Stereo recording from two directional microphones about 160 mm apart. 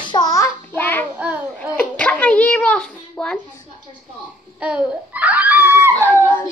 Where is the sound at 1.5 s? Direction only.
10° left (ahead or behind).